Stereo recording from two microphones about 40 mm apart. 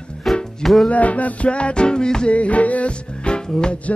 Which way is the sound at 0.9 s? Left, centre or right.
Left.